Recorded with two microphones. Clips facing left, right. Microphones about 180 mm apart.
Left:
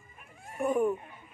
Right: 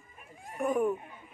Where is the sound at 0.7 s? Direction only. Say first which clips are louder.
Left 1 dB; 5° right (ahead or behind).